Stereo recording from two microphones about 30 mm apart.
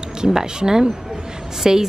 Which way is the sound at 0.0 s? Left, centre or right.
Right.